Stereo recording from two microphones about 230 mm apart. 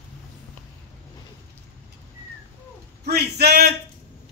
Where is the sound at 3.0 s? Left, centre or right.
Right.